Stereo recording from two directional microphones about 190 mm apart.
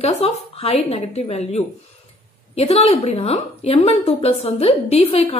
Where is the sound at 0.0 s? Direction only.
30° left (ahead or behind).